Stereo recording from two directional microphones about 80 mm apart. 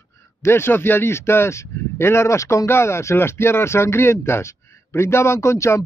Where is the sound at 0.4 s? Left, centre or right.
Left.